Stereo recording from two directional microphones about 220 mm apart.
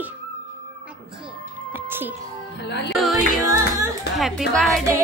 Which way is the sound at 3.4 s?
15° right (ahead or behind).